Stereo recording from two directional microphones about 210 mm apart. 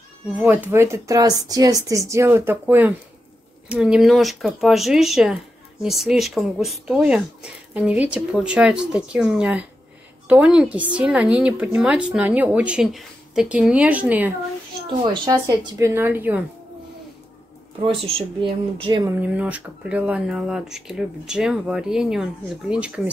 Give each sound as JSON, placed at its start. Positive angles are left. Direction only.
{"t": 0.4, "sound": "speech", "side_deg": -10}
{"t": 18.1, "sound": "speech", "side_deg": -25}
{"t": 19.1, "sound": "speech", "side_deg": -5}